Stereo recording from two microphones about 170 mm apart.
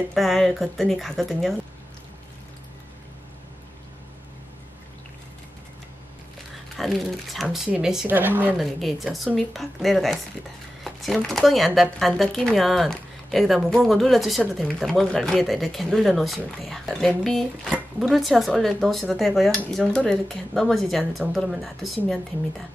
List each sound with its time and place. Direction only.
0.1 s speech: centre (ahead or behind)
6.8 s speech: centre (ahead or behind)
10.8 s a sound: centre (ahead or behind)
11.2 s speech: centre (ahead or behind)